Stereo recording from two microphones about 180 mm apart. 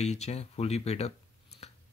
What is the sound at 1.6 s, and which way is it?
Scissors, 35° left (ahead or behind).